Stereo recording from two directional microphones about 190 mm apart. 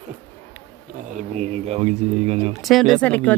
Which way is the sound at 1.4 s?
35° right (ahead or behind).